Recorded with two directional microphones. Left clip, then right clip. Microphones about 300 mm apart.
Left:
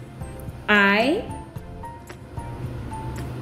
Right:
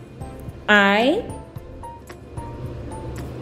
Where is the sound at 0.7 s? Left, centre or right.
Centre.